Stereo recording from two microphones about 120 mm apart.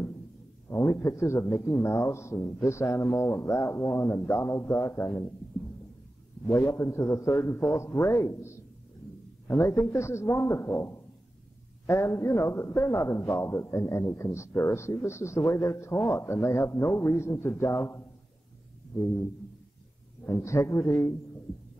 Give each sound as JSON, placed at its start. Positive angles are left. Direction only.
{"t": 0.7, "sound": "a man's voice", "side_deg": 20}
{"t": 6.4, "sound": "a man's voice", "side_deg": 25}
{"t": 20.2, "sound": "a man's voice", "side_deg": 25}